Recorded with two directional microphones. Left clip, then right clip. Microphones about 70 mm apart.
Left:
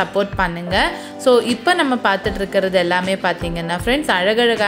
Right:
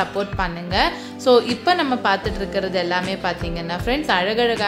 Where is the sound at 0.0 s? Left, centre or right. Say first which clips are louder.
Left 4 dB; left.